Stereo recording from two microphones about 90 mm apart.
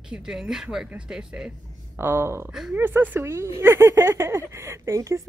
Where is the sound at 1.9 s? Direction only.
25° right (ahead or behind).